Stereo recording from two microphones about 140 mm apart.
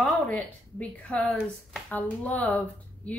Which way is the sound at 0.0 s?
10° left (ahead or behind).